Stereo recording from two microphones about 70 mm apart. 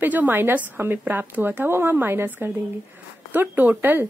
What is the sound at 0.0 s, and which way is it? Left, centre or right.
Speech, right.